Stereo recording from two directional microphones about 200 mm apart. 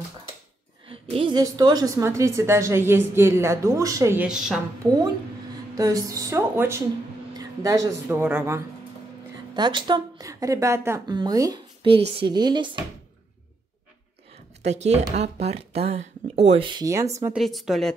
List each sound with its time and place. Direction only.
0.8 s a woman's voice: 25° right (ahead or behind); by 4.6 s 5° right (ahead or behind)
5.8 s a woman's voice: 15° right (ahead or behind)
9.5 s speech: 20° right (ahead or behind)
14.6 s speech: 35° right (ahead or behind); by 17.3 s 15° right (ahead or behind)
17.3 s a woman's voice: centre (ahead or behind)